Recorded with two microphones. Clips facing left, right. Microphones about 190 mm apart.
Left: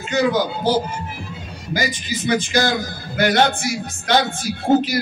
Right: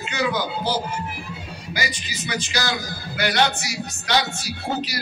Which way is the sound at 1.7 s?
45° left (ahead or behind).